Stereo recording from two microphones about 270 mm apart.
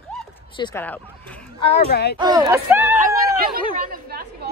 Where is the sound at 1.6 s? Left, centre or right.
Left.